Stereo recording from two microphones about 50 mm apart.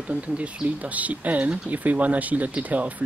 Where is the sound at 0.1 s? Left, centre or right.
Right.